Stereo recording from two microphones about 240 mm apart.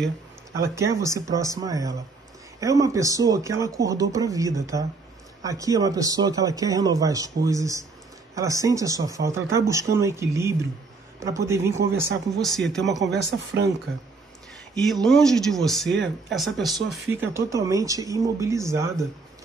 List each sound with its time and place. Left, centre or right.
0.7 s speech: centre
12.4 s speech: centre
13.0 s speech: right
15.0 s speech: centre